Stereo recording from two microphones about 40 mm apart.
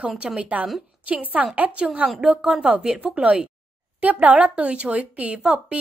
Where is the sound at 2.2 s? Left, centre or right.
Centre.